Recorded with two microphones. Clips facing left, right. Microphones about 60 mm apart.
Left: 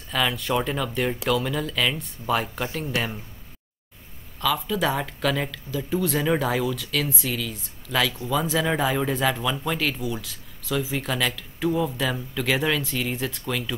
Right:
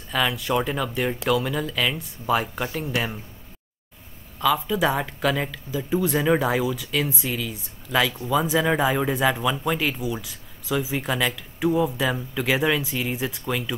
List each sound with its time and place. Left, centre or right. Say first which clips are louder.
0.1 s speech: right 1 dB; centre
2.5 s speech: right 1 dB; right
2.8 s speech: even; centre
4.4 s speech: right 3 dB; centre